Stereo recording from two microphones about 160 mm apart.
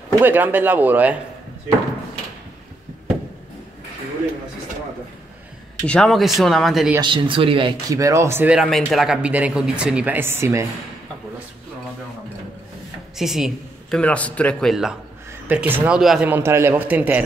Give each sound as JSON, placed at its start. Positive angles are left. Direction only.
{"t": 0.2, "sound": "speech", "side_deg": -10}
{"t": 5.9, "sound": "a man's voice", "side_deg": 5}
{"t": 7.0, "sound": "speech", "side_deg": -30}
{"t": 8.0, "sound": "speech", "side_deg": -20}
{"t": 8.5, "sound": "speech", "side_deg": 0}
{"t": 13.2, "sound": "a man's voice", "side_deg": 0}
{"t": 15.4, "sound": "speech", "side_deg": -10}